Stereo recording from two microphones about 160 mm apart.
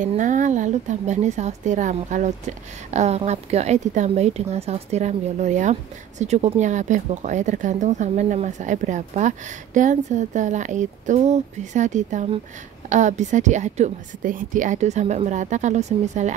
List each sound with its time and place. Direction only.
0.0 s speech: 50° right (ahead or behind)